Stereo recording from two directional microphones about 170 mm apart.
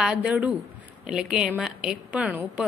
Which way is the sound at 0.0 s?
5° right (ahead or behind).